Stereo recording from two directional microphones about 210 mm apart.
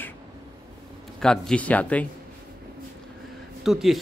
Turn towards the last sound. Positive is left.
turn(degrees=0)  # may be behind; listen again after turning